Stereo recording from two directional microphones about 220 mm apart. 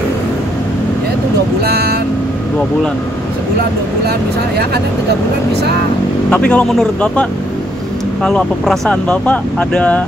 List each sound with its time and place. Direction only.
1.6 s speech: 45° right (ahead or behind)
6.3 s speech: 5° left (ahead or behind)